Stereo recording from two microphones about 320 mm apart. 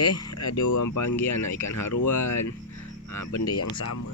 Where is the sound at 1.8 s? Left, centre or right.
Left.